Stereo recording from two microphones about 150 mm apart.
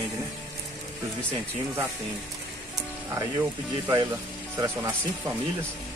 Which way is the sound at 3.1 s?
20° right (ahead or behind).